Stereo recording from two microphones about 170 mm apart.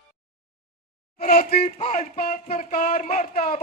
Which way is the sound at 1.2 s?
60° left (ahead or behind).